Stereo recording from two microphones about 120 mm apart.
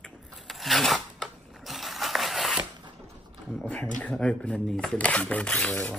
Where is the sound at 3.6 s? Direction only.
15° left (ahead or behind).